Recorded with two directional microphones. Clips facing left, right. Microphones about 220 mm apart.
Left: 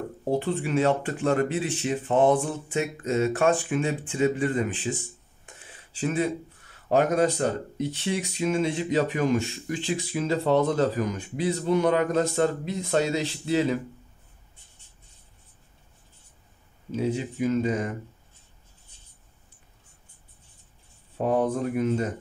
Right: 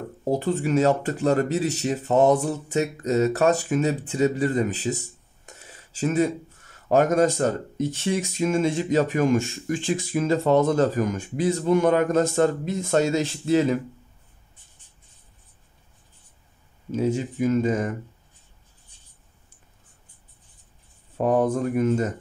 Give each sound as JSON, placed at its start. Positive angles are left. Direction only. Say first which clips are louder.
{"t": 0.3, "sound": "speech", "louder": "right 3 dB", "side_deg": -40}
{"t": 16.9, "sound": "speech", "louder": "right 3 dB", "side_deg": -45}
{"t": 21.2, "sound": "speech", "louder": "right 3 dB", "side_deg": -45}